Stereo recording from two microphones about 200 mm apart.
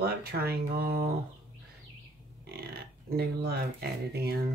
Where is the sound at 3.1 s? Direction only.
50° right (ahead or behind).